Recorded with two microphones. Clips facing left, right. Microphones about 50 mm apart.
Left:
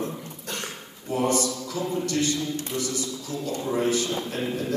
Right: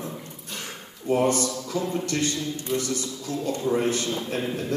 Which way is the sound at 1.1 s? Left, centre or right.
Right.